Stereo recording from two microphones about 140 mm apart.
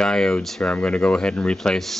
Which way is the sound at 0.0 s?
5° left (ahead or behind).